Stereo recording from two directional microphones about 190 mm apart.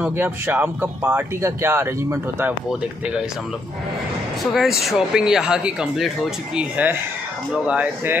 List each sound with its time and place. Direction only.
0.0 s speech: 10° right (ahead or behind)
4.4 s speech: centre (ahead or behind)